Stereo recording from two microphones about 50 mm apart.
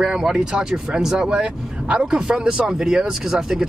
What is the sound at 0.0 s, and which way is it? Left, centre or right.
Speech, centre.